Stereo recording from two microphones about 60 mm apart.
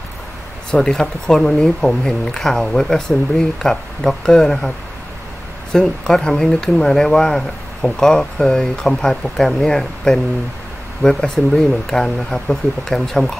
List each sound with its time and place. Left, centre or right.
0.7 s speech: centre